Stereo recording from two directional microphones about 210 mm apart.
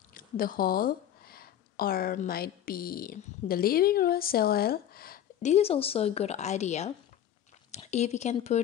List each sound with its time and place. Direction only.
0.1 s speech: 45° left (ahead or behind)